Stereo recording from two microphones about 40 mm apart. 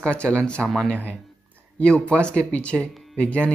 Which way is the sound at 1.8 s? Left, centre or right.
Left.